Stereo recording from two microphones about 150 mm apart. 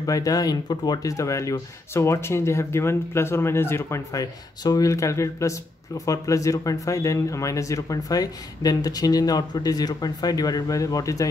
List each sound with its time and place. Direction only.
0.0 s speech: 25° left (ahead or behind)